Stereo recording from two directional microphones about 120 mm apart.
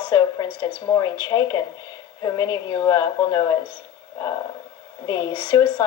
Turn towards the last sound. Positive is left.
turn(degrees=45)  # may be behind; listen again after turning